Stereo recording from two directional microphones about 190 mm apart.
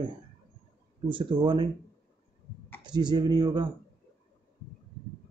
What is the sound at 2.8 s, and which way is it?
Speech, 20° right (ahead or behind).